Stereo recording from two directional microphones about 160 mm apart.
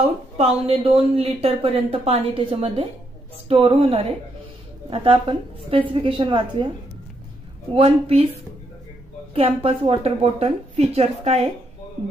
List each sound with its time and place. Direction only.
0.0 s speech: 40° right (ahead or behind)
7.7 s speech: 35° right (ahead or behind)
9.3 s speech: 35° right (ahead or behind)